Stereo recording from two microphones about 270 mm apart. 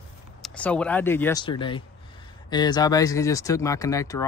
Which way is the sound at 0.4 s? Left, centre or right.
Centre.